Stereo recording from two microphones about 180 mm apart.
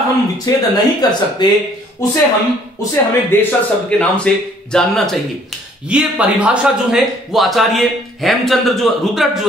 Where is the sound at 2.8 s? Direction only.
10° left (ahead or behind).